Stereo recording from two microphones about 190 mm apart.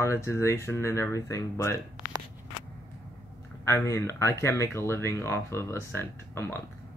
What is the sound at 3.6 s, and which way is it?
Speech, 15° left (ahead or behind).